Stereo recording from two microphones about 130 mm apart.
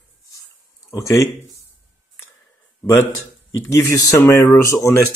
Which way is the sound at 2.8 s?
20° left (ahead or behind).